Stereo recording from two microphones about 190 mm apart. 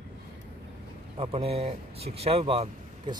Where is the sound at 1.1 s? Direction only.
30° right (ahead or behind).